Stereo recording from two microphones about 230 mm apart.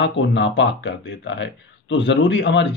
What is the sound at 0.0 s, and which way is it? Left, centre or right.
Speech, left.